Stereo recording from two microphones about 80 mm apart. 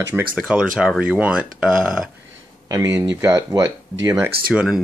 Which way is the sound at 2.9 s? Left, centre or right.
Right.